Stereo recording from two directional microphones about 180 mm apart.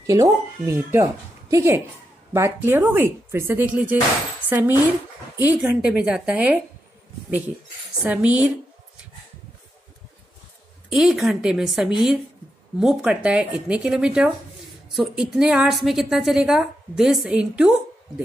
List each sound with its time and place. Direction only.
0.0 s speech: 20° right (ahead or behind)
5.4 s a woman's voice: 10° right (ahead or behind)
10.9 s a woman's voice: centre (ahead or behind)